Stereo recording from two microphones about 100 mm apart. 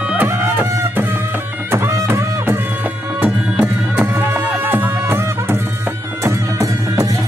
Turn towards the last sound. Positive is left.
turn(degrees=-30)  # may be behind; listen again after turning